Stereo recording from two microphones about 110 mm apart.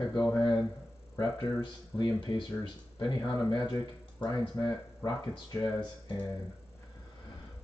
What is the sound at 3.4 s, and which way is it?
Speech, 35° left (ahead or behind).